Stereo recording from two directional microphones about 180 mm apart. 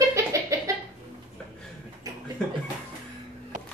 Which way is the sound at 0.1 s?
15° right (ahead or behind).